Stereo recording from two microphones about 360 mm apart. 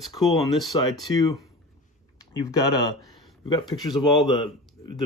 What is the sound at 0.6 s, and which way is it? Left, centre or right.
Speech, centre.